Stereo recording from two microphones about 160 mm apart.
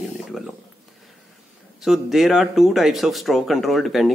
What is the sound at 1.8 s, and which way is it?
Speech, centre (ahead or behind).